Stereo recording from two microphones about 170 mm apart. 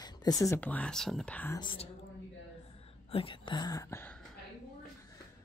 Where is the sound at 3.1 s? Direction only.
30° left (ahead or behind).